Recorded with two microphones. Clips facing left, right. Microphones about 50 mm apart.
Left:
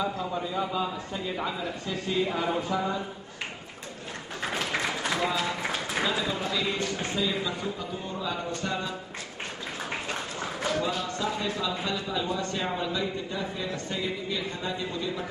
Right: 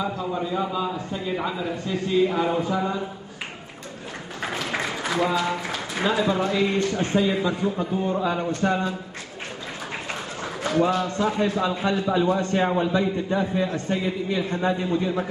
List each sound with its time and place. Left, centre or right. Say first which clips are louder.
0.0 s speech: right 3 dB; centre
5.0 s a man's voice: right 7 dB; centre
6.0 s a man's voice: right 11 dB; right
10.8 s a man's voice: right 8 dB; right